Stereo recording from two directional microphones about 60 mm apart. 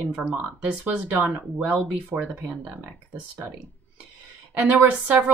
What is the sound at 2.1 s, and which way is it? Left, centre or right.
Speech, right.